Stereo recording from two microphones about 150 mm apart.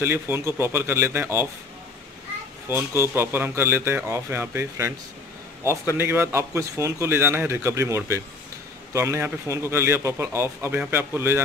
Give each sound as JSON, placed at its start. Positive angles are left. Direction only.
{"t": 0.0, "sound": "a man's voice", "side_deg": -15}
{"t": 2.7, "sound": "a man's voice", "side_deg": -15}
{"t": 5.9, "sound": "a man's voice", "side_deg": -15}